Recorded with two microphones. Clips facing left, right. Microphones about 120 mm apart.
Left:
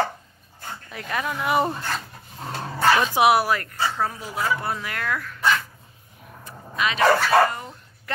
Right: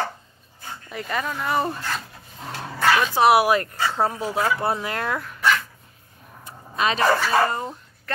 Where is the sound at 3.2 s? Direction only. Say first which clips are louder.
Right 1 dB; 15° left (ahead or behind).